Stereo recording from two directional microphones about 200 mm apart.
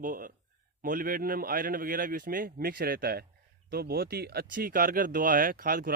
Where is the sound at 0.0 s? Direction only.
45° right (ahead or behind).